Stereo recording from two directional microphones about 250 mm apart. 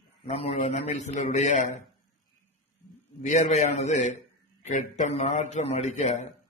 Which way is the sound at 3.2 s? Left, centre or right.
Left.